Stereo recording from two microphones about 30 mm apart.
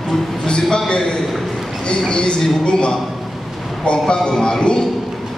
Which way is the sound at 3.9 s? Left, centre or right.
Left.